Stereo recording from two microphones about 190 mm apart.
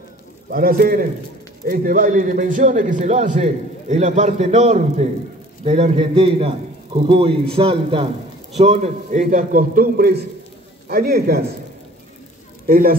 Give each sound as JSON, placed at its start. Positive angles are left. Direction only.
{"t": 0.5, "sound": "a man's voice", "side_deg": -50}
{"t": 12.6, "sound": "speech", "side_deg": -50}